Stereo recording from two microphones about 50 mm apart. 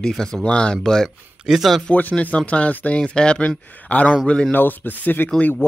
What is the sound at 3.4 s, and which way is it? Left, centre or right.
Speech, left.